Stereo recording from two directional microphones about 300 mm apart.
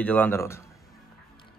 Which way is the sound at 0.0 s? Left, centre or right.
Centre.